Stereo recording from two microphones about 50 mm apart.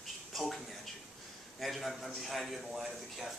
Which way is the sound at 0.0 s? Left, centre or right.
Centre.